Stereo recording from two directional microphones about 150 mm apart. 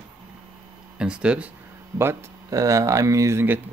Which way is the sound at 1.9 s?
20° right (ahead or behind).